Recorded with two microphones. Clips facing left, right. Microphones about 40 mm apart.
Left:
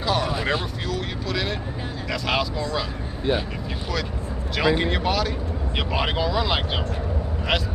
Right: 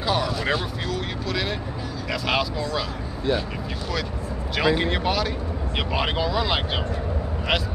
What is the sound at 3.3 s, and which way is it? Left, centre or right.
Speech, left.